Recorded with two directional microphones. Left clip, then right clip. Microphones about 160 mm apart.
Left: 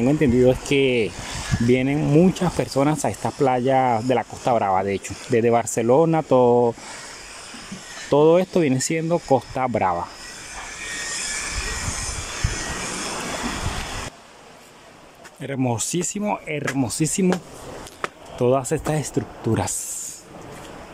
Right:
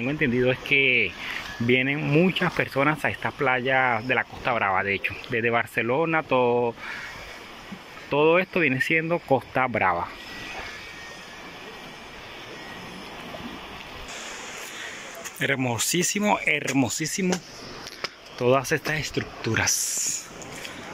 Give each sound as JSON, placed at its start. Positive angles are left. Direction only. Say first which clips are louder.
{"t": 0.0, "sound": "speech", "louder": "left 6 dB", "side_deg": 30}
{"t": 1.7, "sound": "speech", "louder": "left 2 dB", "side_deg": 25}
{"t": 8.1, "sound": "speech", "louder": "left 4 dB", "side_deg": 35}
{"t": 9.1, "sound": "speech", "louder": "left 3 dB", "side_deg": 15}
{"t": 15.4, "sound": "speech", "louder": "right 1 dB", "side_deg": 15}
{"t": 16.4, "sound": "speech", "louder": "right 2 dB", "side_deg": 0}
{"t": 16.9, "sound": "speech", "louder": "left 5 dB", "side_deg": 15}
{"t": 18.4, "sound": "speech", "louder": "left 2 dB", "side_deg": 15}
{"t": 18.9, "sound": "speech", "louder": "left 2 dB", "side_deg": 45}